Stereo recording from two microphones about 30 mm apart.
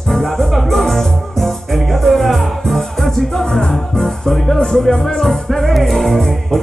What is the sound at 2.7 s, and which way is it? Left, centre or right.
Music, centre.